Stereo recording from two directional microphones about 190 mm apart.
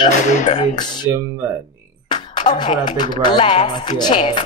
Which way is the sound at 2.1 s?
25° left (ahead or behind).